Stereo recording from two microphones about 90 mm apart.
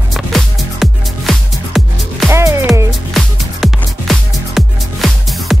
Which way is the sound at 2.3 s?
30° right (ahead or behind).